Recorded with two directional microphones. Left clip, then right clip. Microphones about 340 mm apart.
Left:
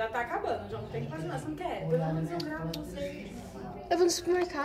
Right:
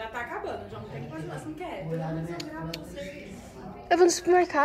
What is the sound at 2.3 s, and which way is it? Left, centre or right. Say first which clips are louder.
Speech: left 1 dB; centre.